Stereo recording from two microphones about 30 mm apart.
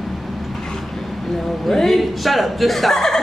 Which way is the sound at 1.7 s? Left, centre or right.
Centre.